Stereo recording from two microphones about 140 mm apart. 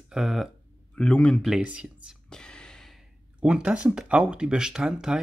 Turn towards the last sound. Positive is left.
turn(degrees=-5)  # may be behind; listen again after turning